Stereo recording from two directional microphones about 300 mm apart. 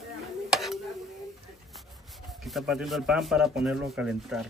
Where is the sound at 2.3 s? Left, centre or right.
Centre.